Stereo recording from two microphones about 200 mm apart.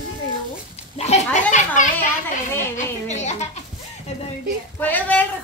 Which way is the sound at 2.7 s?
35° left (ahead or behind).